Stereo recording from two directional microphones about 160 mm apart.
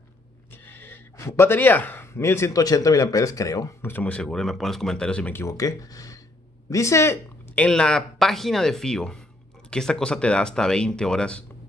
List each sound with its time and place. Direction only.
0.5 s speech: 15° left (ahead or behind)
3.9 s speech: 10° left (ahead or behind)
7.6 s speech: 5° left (ahead or behind)